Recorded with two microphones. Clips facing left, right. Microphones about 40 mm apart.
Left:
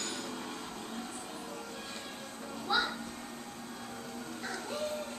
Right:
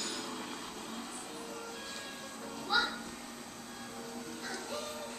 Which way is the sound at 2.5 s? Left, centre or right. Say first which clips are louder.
Even; centre.